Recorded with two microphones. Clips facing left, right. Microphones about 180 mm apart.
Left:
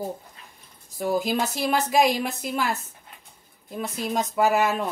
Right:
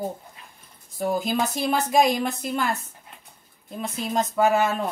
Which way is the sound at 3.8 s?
Centre (ahead or behind).